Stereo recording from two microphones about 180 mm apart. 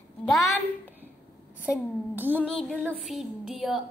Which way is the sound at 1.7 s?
10° right (ahead or behind).